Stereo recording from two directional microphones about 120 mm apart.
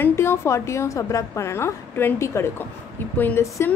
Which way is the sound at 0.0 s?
20° left (ahead or behind).